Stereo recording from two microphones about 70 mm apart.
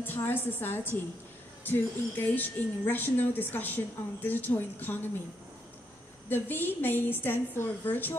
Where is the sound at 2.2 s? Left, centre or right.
Left.